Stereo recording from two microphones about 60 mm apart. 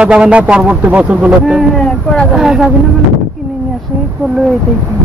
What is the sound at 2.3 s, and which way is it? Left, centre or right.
Speech, centre.